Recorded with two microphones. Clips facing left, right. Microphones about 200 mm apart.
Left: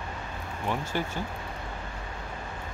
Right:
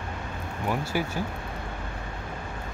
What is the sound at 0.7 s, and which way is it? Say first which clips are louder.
Speech: right 2 dB; 10° right (ahead or behind).